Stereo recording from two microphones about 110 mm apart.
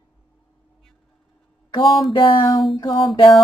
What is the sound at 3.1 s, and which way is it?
Mantra, 50° left (ahead or behind).